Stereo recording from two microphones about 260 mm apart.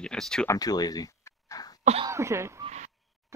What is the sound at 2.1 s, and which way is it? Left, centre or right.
Throat clearing, centre.